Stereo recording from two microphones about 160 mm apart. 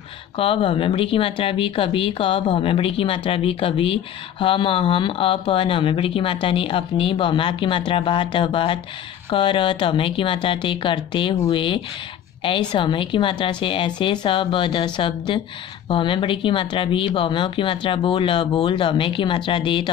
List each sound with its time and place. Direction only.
0.4 s speech: 35° left (ahead or behind)